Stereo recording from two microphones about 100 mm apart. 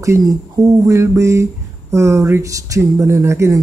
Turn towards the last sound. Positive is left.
turn(degrees=-30)  # may be behind; listen again after turning